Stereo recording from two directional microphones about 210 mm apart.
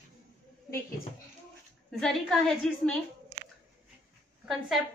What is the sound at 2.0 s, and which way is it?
Speech, centre (ahead or behind).